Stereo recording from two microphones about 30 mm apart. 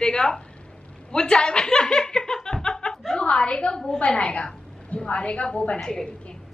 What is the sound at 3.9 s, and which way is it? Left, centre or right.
A woman's voice, left.